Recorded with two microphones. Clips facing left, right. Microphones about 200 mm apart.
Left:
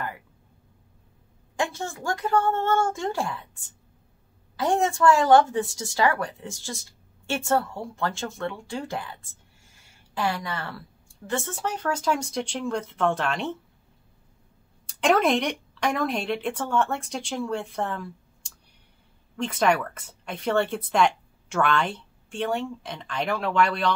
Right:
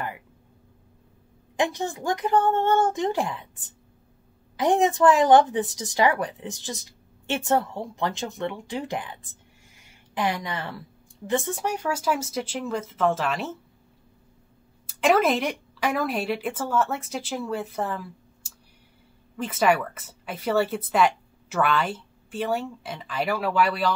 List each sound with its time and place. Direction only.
1.6 s a woman's voice: 20° right (ahead or behind)
9.7 s a sound: 15° right (ahead or behind)
11.2 s speech: 15° right (ahead or behind)
14.9 s speech: 5° right (ahead or behind)